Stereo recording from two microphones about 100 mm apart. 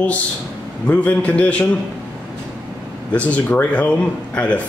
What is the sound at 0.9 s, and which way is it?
Speech, 15° left (ahead or behind).